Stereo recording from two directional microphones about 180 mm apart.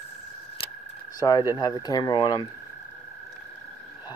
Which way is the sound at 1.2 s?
25° left (ahead or behind).